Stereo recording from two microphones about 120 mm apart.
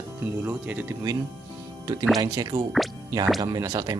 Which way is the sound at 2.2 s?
35° right (ahead or behind).